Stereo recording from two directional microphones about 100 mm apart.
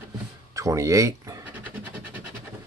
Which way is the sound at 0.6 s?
30° right (ahead or behind).